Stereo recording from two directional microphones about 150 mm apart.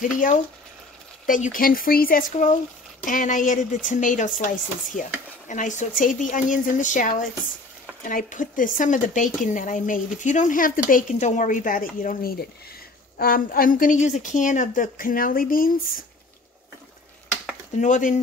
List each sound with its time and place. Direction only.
0.0 s speech: 60° left (ahead or behind); by 12.4 s 85° left
13.2 s speech: 70° left (ahead or behind)
17.7 s speech: 55° left (ahead or behind)